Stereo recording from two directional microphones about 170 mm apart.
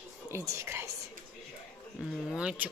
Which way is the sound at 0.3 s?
15° right (ahead or behind).